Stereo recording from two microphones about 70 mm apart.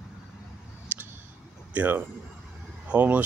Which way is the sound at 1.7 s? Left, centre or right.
Right.